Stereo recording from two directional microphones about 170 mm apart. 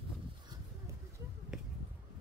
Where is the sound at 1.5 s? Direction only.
5° right (ahead or behind).